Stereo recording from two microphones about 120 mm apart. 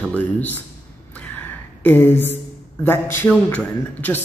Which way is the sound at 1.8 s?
15° left (ahead or behind).